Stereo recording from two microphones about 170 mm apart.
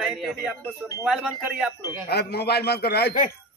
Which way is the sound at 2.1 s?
70° left (ahead or behind).